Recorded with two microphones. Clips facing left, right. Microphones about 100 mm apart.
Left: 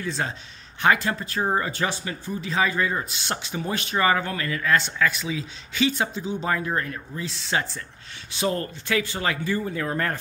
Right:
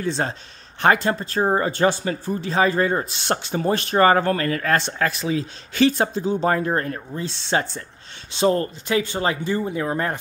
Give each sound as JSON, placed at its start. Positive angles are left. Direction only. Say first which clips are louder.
{"t": 0.0, "sound": "speech", "louder": "right 4 dB", "side_deg": -35}